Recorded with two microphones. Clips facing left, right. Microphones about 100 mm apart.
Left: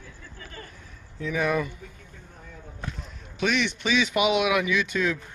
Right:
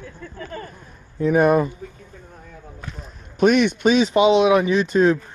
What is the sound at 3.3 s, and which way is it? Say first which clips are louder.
Speech: right 10 dB; 45° right (ahead or behind).